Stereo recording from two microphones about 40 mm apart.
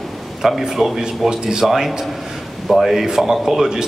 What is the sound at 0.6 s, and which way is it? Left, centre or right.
Speech, centre.